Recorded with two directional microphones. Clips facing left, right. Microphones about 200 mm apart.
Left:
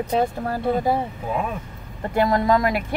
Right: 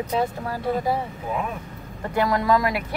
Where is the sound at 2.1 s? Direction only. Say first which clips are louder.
Left 2 dB; 25° left (ahead or behind).